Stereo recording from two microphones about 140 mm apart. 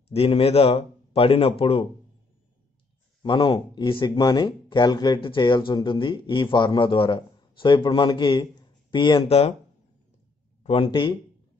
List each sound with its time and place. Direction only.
0.1 s a man's voice: 45° left (ahead or behind)
3.2 s speech: 35° left (ahead or behind)
9.3 s a man's voice: 50° left (ahead or behind)
10.6 s speech: 45° left (ahead or behind)